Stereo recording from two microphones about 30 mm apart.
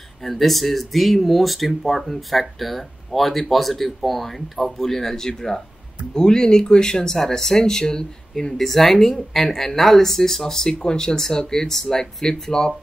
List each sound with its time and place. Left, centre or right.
0.2 s speech: centre; by 8.5 s left
8.5 s speech: centre